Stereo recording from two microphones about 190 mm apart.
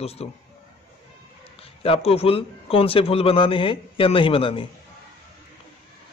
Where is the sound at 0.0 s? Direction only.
30° left (ahead or behind).